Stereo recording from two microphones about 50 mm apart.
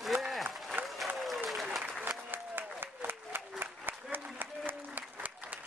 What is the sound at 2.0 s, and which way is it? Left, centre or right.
Applause, right.